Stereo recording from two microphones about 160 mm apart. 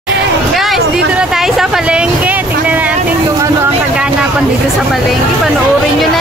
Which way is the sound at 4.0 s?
5° right (ahead or behind).